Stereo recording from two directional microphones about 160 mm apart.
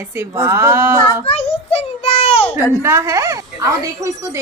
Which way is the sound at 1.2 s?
40° left (ahead or behind).